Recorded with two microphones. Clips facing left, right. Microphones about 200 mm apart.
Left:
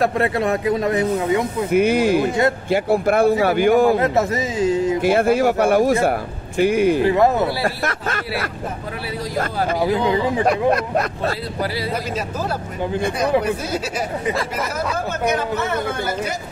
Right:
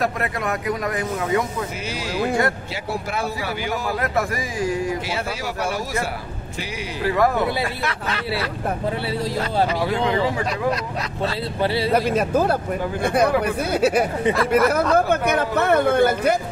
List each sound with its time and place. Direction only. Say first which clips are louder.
0.0 s speech: left 6 dB; 30° left (ahead or behind)
1.7 s speech: left 13 dB; 55° left (ahead or behind)
3.9 s speech: left 5 dB; 25° left (ahead or behind)
5.0 s speech: left 12 dB; 55° left (ahead or behind)
7.1 s speech: left 4 dB; 25° left (ahead or behind)
7.6 s speech: left 3 dB; 45° left (ahead or behind)
10.7 s speech: left 6 dB; 55° left (ahead or behind)
11.9 s speech: right 6 dB; 55° right (ahead or behind)